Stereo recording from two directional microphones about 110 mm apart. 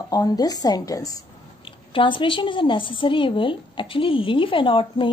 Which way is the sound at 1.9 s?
50° left (ahead or behind).